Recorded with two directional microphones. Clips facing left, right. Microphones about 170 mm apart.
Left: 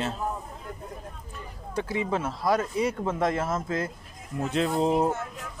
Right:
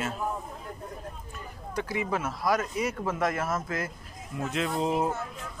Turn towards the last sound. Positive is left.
turn(degrees=35)  # may be behind; listen again after turning